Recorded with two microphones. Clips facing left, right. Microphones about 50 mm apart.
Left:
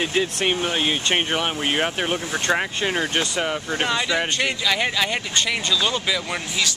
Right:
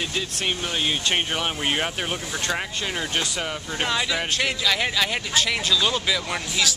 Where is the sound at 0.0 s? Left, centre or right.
Left; by 1.9 s centre.